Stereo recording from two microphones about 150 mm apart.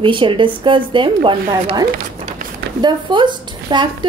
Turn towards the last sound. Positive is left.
turn(degrees=-30)  # may be behind; listen again after turning